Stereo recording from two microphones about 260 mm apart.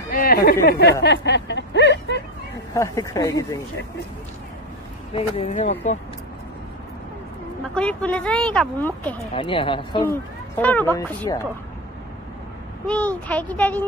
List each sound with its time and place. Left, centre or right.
0.1 s speech: left
1.0 s a sound: left
2.7 s speech: centre
5.1 s speech: left
7.7 s speech: centre
9.3 s speech: centre
10.6 s speech: centre
12.8 s speech: centre